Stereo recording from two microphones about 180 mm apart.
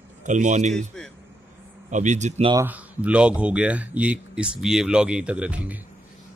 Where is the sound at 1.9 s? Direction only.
40° right (ahead or behind).